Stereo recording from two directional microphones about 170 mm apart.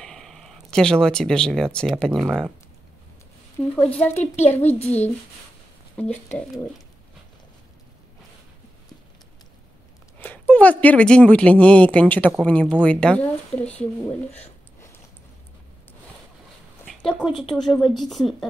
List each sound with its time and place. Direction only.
0.0 s speech: centre (ahead or behind)
3.7 s speech: 10° left (ahead or behind)
4.1 s a child's voice: 40° left (ahead or behind)
5.9 s speech: 5° left (ahead or behind)
10.2 s speech: 10° left (ahead or behind)
16.8 s a woman's voice: centre (ahead or behind)